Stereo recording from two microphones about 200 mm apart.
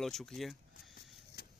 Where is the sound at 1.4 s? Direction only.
50° left (ahead or behind).